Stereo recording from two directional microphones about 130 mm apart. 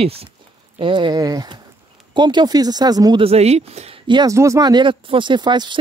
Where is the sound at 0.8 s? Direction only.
40° right (ahead or behind).